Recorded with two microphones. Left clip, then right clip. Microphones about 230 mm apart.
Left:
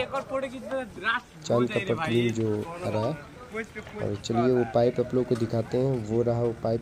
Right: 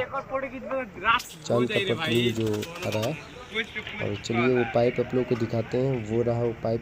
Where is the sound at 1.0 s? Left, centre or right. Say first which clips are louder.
Right 7 dB; centre.